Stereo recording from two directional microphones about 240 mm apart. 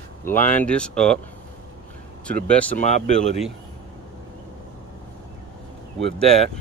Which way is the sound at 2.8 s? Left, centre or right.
Left.